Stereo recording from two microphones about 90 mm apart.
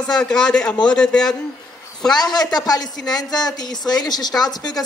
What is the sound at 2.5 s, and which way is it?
A woman's voice, 45° left (ahead or behind).